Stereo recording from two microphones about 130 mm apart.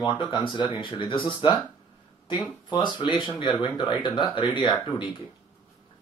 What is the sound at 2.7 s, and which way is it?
Speech, 35° left (ahead or behind).